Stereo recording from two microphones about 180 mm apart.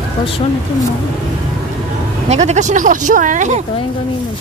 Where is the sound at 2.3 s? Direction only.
40° right (ahead or behind).